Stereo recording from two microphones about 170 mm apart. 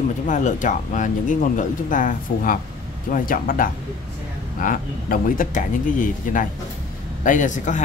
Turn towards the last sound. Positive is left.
turn(degrees=50)  # may be behind; listen again after turning